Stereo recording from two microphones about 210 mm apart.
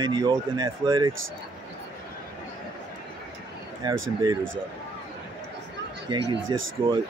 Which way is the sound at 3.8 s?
20° right (ahead or behind).